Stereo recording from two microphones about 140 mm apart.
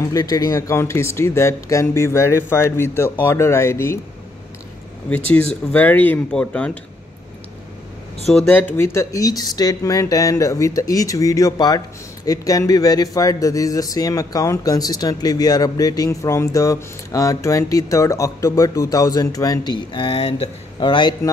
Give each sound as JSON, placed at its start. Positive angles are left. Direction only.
{"t": 0.0, "sound": "speech", "side_deg": 25}
{"t": 5.7, "sound": "speech", "side_deg": 10}
{"t": 8.5, "sound": "speech", "side_deg": 15}